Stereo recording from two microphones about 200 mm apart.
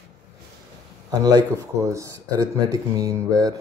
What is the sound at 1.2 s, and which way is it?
Speech, 15° right (ahead or behind).